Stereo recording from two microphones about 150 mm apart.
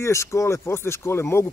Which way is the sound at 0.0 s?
20° left (ahead or behind).